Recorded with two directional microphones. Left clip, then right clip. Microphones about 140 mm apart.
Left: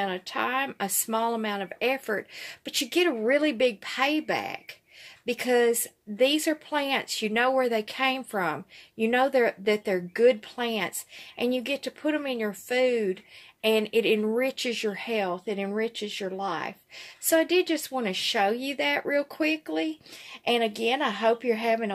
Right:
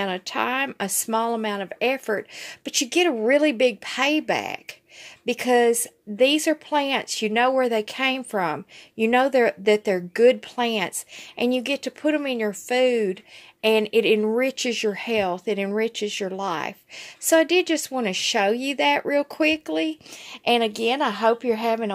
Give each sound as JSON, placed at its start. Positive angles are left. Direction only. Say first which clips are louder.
{"t": 0.0, "sound": "speech", "louder": "right 4 dB", "side_deg": -45}